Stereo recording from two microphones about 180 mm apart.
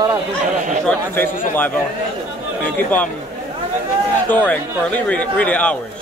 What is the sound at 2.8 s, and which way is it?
Speech, 10° left (ahead or behind).